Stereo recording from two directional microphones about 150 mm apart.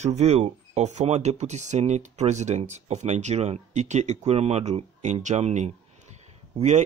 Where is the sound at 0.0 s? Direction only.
50° right (ahead or behind).